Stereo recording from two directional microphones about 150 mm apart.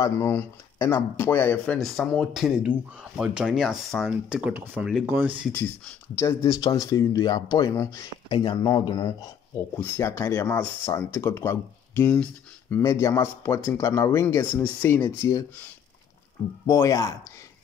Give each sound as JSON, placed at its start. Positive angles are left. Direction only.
{"t": 0.0, "sound": "speech", "side_deg": 15}
{"t": 1.8, "sound": "speech", "side_deg": 0}
{"t": 5.5, "sound": "speech", "side_deg": 15}
{"t": 16.6, "sound": "speech", "side_deg": 20}